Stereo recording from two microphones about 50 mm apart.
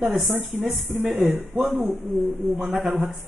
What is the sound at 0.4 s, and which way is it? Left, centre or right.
A man's voice, centre.